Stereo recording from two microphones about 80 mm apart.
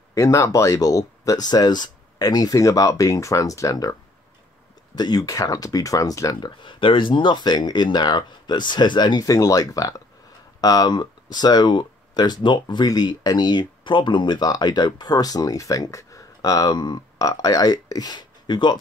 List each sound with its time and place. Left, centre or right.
0.1 s speech: left
4.9 s speech: left
5.2 s speech: left
6.4 s speech: left
9.2 s speech: left